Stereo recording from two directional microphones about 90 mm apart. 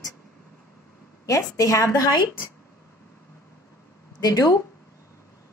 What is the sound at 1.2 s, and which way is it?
Speech, 40° left (ahead or behind).